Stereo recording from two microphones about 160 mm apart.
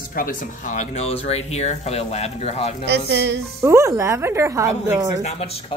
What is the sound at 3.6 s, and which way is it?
Speech, 20° right (ahead or behind).